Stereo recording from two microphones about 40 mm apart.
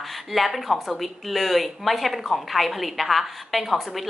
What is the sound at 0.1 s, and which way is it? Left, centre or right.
Speech, centre.